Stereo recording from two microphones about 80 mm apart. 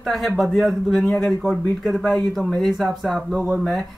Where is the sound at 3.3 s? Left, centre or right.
Right.